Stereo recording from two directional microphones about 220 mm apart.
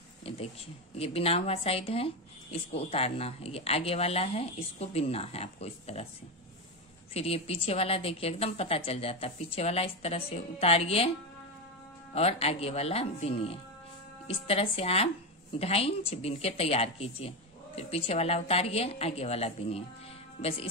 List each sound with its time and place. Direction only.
0.2 s a woman's voice: 25° left (ahead or behind)
7.2 s a woman's voice: 25° left (ahead or behind)
12.1 s a woman's voice: 30° left (ahead or behind)